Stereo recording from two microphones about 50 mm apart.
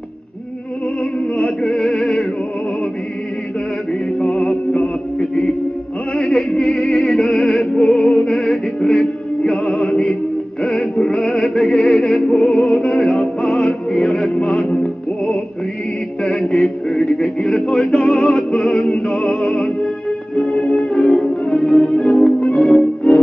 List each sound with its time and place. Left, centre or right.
1.1 s music: centre
1.9 s music: centre
4.2 s music: centre
6.1 s music: centre
16.2 s music: centre
20.3 s music: centre
20.6 s music: centre